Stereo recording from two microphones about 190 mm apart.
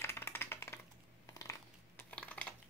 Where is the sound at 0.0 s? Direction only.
10° left (ahead or behind).